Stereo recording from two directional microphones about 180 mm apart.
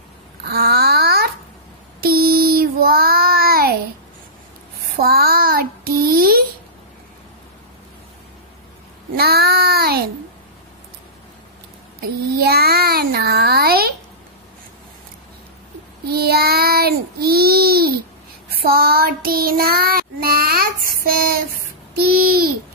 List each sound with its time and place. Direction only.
0.5 s babbling: 60° right (ahead or behind)
2.0 s child singing: 55° right (ahead or behind)
5.0 s child singing: 60° right (ahead or behind)
9.1 s child singing: 60° right (ahead or behind)
12.0 s a child's voice: 60° right (ahead or behind)
16.1 s child singing: 60° right (ahead or behind)
21.9 s a child's voice: 60° right (ahead or behind)